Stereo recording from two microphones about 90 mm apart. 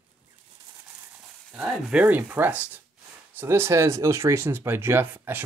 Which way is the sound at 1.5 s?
20° right (ahead or behind).